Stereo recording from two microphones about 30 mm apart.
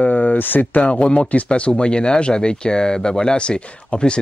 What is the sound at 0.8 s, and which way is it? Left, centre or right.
Speech, left.